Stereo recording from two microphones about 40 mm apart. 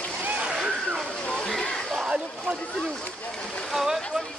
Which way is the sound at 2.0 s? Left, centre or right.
Right.